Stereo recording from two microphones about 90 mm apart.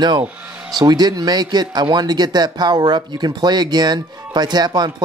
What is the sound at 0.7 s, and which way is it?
Speech, 50° right (ahead or behind).